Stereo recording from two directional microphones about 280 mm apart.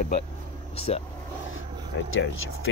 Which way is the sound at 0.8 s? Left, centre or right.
Left.